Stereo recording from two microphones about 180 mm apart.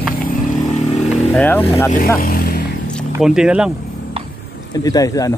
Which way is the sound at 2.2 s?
55° left (ahead or behind).